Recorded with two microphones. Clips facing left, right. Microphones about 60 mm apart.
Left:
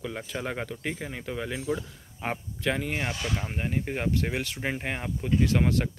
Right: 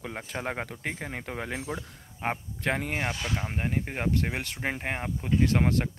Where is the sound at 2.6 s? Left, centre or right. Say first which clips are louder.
Even; right.